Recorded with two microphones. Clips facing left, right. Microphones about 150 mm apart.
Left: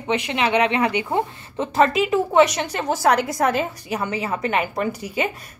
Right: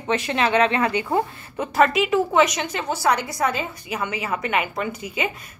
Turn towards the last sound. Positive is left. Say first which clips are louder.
# left 3 dB
turn(degrees=40)  # may be behind; listen again after turning